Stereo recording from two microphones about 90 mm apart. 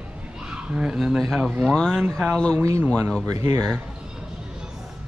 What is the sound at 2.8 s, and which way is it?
Speech, 25° right (ahead or behind).